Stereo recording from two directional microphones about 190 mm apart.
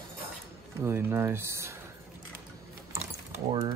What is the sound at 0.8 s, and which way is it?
Speech, 10° right (ahead or behind).